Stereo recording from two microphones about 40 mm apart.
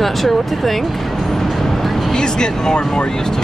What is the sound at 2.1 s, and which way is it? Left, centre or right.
Speech, centre.